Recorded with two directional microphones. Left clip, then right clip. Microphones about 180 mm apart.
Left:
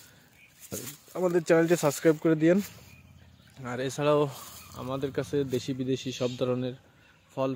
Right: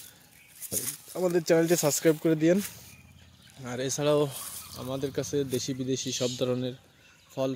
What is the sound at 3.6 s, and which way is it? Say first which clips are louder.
Speech: even; centre (ahead or behind).